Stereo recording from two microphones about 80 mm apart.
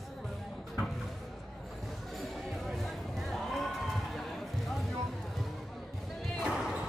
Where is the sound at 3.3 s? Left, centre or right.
Centre.